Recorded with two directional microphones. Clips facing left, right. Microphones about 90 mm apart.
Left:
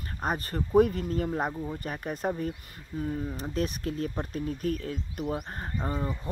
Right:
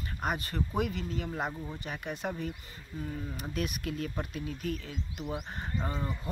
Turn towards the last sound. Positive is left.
turn(degrees=15)  # may be behind; listen again after turning